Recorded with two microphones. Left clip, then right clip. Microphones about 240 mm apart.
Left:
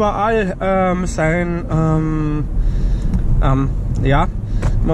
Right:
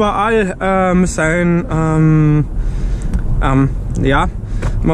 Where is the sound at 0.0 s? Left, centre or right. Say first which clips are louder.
Right 2 dB; right.